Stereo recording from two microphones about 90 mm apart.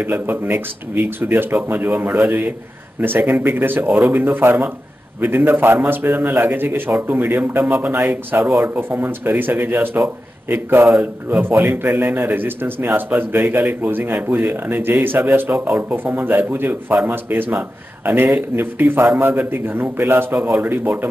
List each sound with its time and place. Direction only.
0.0 s a man's voice: 25° right (ahead or behind)
20.3 s speech: 5° right (ahead or behind)
20.6 s a man's voice: 25° right (ahead or behind)